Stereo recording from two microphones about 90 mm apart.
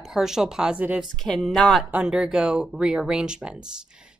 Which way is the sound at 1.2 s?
5° left (ahead or behind).